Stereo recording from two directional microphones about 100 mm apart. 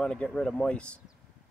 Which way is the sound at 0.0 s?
10° left (ahead or behind).